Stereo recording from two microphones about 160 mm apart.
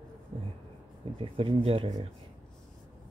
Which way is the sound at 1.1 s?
35° right (ahead or behind).